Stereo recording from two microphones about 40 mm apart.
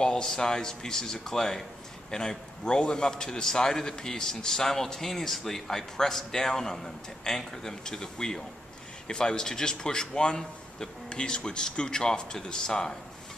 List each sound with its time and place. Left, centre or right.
0.0 s a man's voice: centre